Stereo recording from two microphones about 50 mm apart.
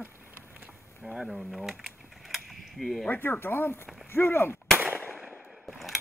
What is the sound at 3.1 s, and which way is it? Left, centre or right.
Speech, left.